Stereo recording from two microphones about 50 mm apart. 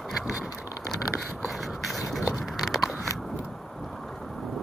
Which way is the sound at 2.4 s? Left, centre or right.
Centre.